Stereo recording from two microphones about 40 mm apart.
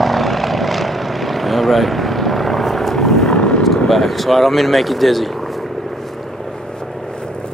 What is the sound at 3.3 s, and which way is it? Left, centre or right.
Vehicle, left.